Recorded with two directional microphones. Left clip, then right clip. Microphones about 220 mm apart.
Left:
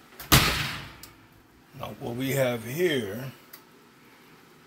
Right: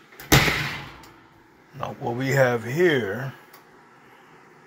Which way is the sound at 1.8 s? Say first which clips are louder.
Right 6 dB; centre (ahead or behind).